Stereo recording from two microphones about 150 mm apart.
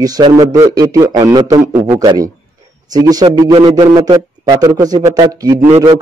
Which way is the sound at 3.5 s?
40° right (ahead or behind).